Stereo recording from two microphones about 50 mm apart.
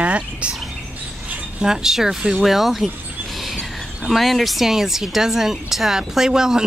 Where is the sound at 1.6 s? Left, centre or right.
Centre.